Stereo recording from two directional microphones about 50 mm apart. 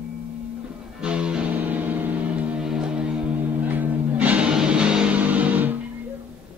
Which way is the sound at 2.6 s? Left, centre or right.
Centre.